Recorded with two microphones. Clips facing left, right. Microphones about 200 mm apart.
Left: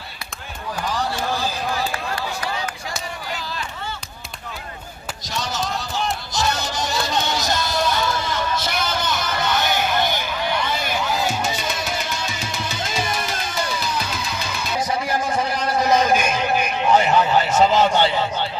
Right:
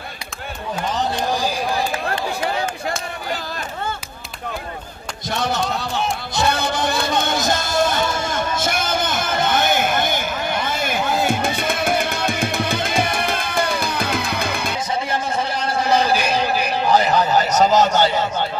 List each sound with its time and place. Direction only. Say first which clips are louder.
1.3 s run: right 3 dB; 15° right (ahead or behind)
5.3 s music: right 4 dB; 55° right (ahead or behind)
15.0 s a sound: left 1 dB; 25° right (ahead or behind); by 18.5 s 40° right (ahead or behind)